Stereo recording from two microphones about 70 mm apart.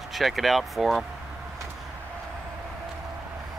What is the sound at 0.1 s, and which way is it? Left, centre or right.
Speech, centre.